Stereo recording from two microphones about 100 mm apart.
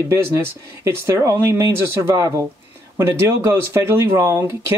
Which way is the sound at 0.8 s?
30° right (ahead or behind).